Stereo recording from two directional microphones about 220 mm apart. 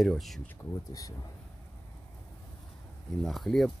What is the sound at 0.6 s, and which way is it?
Speech, 15° left (ahead or behind).